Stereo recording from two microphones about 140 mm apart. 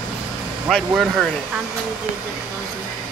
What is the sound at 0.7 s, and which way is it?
Speech, centre (ahead or behind).